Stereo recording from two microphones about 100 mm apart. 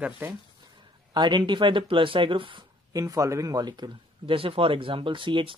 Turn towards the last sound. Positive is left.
turn(degrees=-60)  # may be behind; listen again after turning